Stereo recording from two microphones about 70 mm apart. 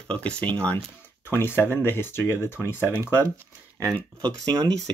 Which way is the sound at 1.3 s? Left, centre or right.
Left.